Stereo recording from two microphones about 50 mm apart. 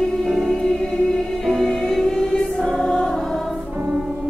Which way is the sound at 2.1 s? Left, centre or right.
Centre.